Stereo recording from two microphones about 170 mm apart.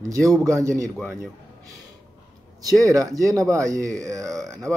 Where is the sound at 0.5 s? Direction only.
20° right (ahead or behind).